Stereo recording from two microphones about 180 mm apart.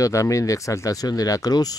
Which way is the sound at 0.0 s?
15° left (ahead or behind).